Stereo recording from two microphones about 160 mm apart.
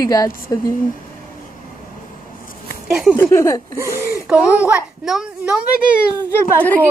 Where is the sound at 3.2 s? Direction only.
15° left (ahead or behind).